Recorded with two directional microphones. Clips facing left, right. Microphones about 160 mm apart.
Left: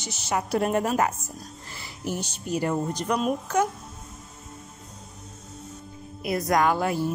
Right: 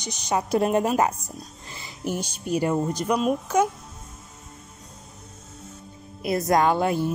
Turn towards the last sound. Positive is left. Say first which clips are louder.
# right 2 dB
turn(degrees=-25)  # may be behind; listen again after turning